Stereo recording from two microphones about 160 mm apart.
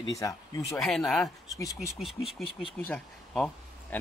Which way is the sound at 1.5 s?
20° left (ahead or behind).